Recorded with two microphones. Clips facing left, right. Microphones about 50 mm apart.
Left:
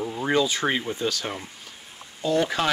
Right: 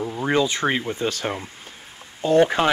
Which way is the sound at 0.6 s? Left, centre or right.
Centre.